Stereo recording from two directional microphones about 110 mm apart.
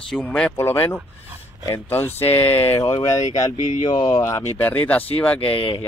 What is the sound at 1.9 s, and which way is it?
Speech, 20° left (ahead or behind).